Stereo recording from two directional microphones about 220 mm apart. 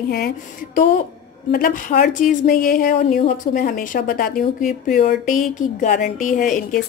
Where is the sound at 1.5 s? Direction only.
40° left (ahead or behind).